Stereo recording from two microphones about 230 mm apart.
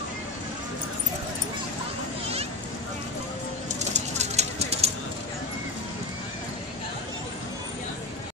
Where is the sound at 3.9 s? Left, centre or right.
Right.